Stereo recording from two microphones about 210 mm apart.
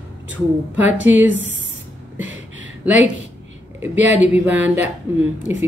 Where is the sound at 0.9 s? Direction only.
60° right (ahead or behind).